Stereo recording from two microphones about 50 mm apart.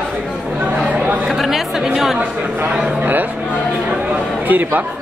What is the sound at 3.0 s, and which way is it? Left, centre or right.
Speech, right.